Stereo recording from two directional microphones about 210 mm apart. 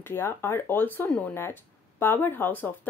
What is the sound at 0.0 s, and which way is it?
A woman's voice, 10° left (ahead or behind).